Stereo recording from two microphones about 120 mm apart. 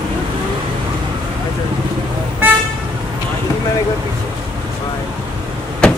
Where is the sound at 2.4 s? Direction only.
15° right (ahead or behind).